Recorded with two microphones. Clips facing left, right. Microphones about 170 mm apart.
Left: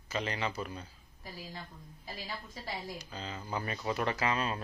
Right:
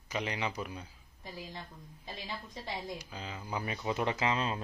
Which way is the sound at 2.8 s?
10° right (ahead or behind).